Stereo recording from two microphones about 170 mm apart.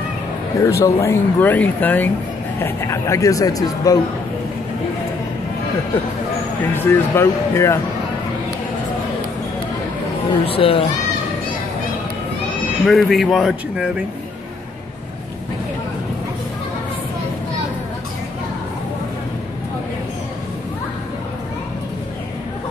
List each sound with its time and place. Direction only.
0.6 s speech: 20° left (ahead or behind)
6.7 s speech: 15° left (ahead or behind)
10.4 s speech: 35° left (ahead or behind)
12.8 s speech: centre (ahead or behind)